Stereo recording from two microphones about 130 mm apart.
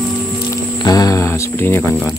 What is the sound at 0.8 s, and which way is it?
Music, 30° left (ahead or behind).